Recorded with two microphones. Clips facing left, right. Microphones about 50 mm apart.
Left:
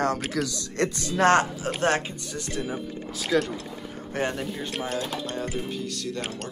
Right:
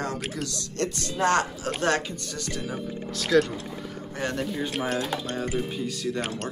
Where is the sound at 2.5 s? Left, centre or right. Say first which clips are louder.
Left 1 dB; centre.